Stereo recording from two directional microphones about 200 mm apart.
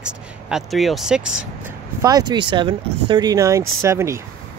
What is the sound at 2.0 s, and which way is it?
Speech, 20° right (ahead or behind).